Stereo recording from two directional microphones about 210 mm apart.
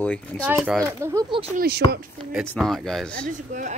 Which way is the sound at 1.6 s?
50° right (ahead or behind).